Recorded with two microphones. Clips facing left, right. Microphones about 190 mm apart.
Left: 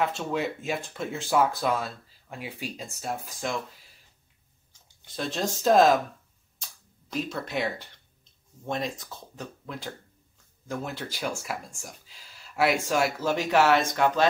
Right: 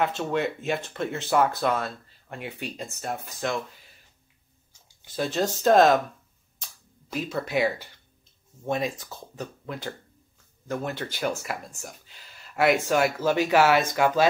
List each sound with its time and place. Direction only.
0.0 s speech: centre (ahead or behind)
5.0 s speech: 5° right (ahead or behind)
6.6 s cap gun: 5° right (ahead or behind)
8.6 s speech: 5° right (ahead or behind)